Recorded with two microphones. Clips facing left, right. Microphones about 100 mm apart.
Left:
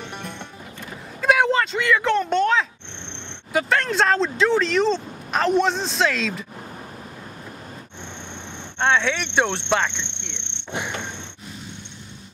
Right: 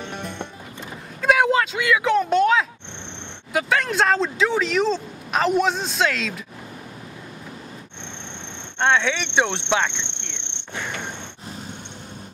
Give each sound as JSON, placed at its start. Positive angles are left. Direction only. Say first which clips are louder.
{"t": 1.2, "sound": "a sound", "louder": "right 1 dB", "side_deg": 0}
{"t": 3.5, "sound": "speech", "louder": "even", "side_deg": 0}
{"t": 8.7, "sound": "speech", "louder": "right 1 dB", "side_deg": 0}
{"t": 10.7, "sound": "insect", "louder": "left 2 dB", "side_deg": 20}